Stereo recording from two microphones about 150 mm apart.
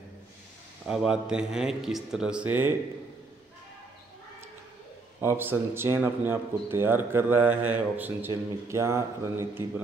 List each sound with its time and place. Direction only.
0.8 s a man's voice: 5° right (ahead or behind)
5.2 s speech: 15° right (ahead or behind)